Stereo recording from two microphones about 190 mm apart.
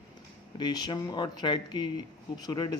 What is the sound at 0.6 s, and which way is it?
Speech, 20° left (ahead or behind).